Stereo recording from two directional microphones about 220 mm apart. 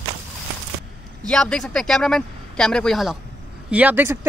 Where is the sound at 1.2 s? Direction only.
5° left (ahead or behind).